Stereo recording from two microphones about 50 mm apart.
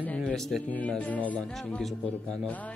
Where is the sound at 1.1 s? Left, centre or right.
Left.